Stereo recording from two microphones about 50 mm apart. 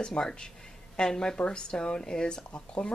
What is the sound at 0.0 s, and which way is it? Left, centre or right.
Speech, centre.